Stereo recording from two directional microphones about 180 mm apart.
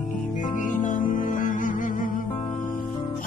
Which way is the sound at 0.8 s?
45° left (ahead or behind).